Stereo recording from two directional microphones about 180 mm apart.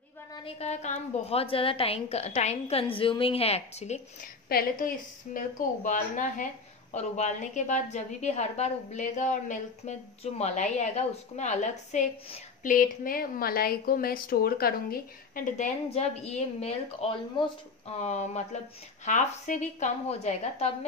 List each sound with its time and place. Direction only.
0.3 s a woman's voice: 30° left (ahead or behind)
4.5 s a woman's voice: 55° left (ahead or behind); by 20.7 s 35° left (ahead or behind)